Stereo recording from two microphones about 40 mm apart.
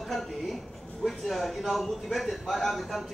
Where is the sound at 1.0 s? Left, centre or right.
Centre.